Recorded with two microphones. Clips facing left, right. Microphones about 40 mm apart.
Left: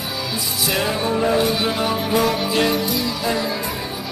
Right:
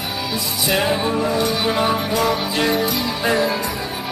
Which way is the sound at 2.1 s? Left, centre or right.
Centre.